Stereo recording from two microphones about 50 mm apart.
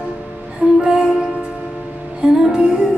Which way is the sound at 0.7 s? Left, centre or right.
Centre.